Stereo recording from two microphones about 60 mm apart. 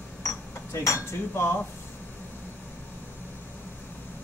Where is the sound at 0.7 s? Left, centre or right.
Left.